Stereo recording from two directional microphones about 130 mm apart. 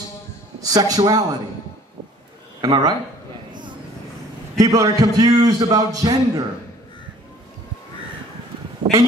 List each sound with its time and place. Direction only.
0.6 s a man's voice: 30° right (ahead or behind)
2.6 s speech: 30° right (ahead or behind)
4.6 s a man's voice: 30° right (ahead or behind)
8.8 s a sound: 35° right (ahead or behind)